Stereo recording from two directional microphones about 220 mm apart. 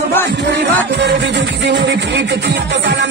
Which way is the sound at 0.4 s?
50° right (ahead or behind).